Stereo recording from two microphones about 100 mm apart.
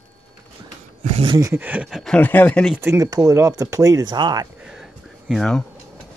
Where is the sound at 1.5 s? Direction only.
15° right (ahead or behind).